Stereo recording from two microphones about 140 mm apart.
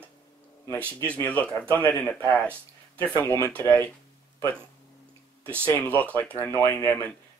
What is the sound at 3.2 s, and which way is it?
Speech, 15° left (ahead or behind).